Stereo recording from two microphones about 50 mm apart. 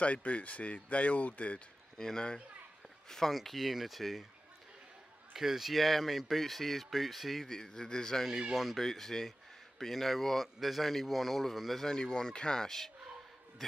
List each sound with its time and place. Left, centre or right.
0.0 s speech: left
2.0 s speech: centre
3.3 s speech: centre
5.3 s speech: centre
7.4 s speech: centre
11.8 s a man's voice: centre